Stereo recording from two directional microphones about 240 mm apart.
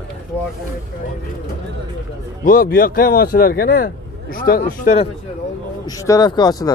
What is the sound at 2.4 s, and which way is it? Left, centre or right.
Speech, left.